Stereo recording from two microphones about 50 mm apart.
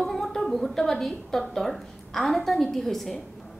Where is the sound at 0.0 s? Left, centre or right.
Centre.